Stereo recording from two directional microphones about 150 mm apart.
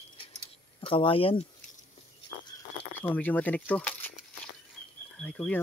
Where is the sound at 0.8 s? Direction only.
35° left (ahead or behind).